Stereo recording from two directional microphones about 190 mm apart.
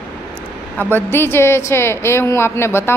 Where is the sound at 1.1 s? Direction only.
10° left (ahead or behind).